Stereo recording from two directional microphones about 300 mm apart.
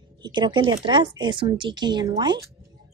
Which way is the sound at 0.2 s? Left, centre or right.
Centre.